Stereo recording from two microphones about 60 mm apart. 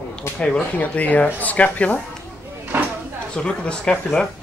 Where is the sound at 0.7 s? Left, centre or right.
Left.